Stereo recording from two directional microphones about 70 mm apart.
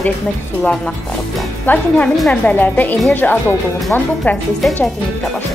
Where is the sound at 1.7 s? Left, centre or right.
Left.